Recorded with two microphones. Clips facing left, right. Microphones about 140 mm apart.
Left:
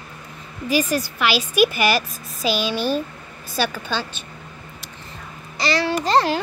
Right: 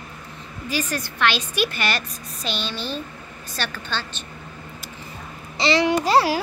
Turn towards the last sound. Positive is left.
turn(degrees=-10)  # may be behind; listen again after turning